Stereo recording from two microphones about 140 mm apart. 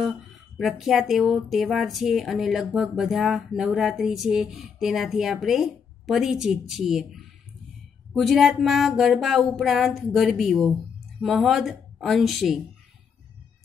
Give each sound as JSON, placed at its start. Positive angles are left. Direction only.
{"t": 0.0, "sound": "a woman's voice", "side_deg": 0}